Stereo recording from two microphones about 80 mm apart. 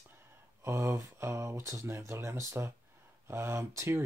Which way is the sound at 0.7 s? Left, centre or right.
Right.